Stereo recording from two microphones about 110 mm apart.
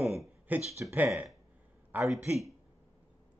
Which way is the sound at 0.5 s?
15° right (ahead or behind).